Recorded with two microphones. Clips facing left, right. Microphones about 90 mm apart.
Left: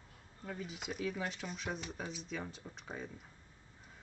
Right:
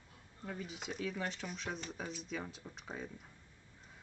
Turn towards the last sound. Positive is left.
turn(degrees=0)  # may be behind; listen again after turning